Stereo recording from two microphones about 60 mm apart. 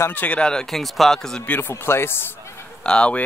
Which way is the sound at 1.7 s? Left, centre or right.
Left.